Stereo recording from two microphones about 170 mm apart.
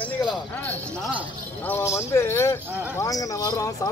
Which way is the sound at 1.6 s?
15° left (ahead or behind).